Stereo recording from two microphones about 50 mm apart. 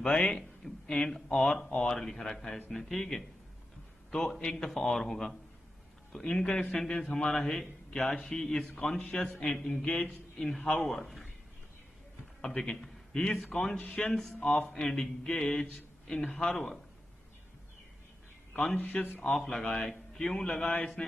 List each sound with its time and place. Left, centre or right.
0.0 s a man's voice: left
1.7 s speech: left
2.0 s a man's voice: centre
10.9 s a man's voice: centre
12.4 s a man's voice: centre
13.8 s speech: left
14.1 s a man's voice: centre
18.5 s a man's voice: centre
18.8 s a man's voice: centre
19.3 s a man's voice: centre
19.6 s speech: left
19.9 s a man's voice: centre